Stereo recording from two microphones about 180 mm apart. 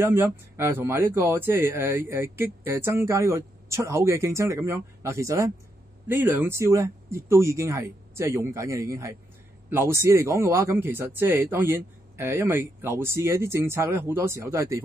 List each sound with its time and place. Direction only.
0.0 s a man's voice: 10° right (ahead or behind)